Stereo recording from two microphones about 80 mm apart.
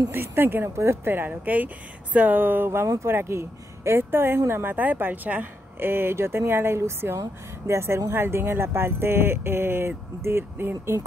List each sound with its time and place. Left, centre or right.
0.1 s speech: right